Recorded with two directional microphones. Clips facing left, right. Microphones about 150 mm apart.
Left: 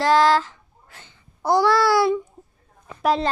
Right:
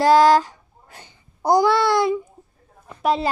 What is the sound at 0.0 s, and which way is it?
Speech, 15° right (ahead or behind).